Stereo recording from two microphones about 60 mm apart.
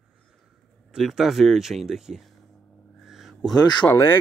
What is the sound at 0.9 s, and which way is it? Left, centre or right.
Speech, centre.